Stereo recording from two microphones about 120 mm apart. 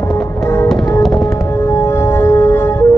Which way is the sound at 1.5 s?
20° left (ahead or behind).